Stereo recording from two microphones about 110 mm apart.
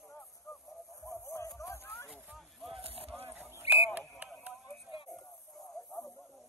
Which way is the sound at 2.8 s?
65° right (ahead or behind).